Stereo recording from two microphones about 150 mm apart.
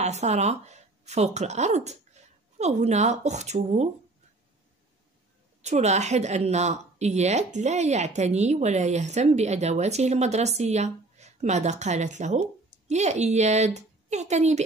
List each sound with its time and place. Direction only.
0.0 s speech: 50° right (ahead or behind)
5.6 s a woman's voice: 50° right (ahead or behind)